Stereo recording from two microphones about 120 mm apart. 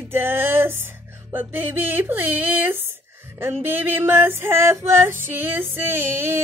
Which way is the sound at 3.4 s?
15° right (ahead or behind).